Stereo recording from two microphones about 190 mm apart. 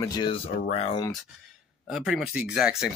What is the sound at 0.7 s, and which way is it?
Speech, 35° left (ahead or behind).